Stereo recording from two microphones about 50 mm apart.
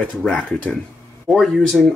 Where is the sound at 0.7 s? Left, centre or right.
Centre.